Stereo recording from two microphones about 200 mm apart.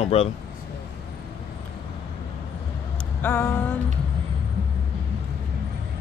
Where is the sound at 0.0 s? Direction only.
30° left (ahead or behind).